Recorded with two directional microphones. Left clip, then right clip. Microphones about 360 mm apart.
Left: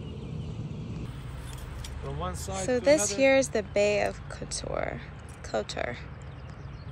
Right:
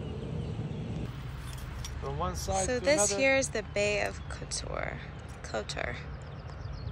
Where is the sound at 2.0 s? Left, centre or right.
Right.